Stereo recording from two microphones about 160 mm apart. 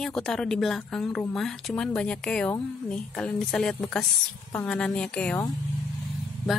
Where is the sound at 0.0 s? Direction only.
Centre (ahead or behind).